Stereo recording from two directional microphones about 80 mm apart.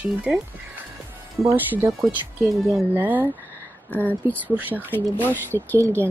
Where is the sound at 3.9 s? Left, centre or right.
Left.